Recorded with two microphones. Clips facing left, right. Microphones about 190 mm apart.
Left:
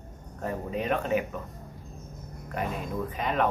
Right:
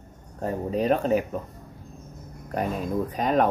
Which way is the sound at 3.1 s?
40° right (ahead or behind).